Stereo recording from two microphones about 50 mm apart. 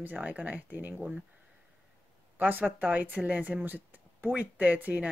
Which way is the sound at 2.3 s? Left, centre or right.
Right.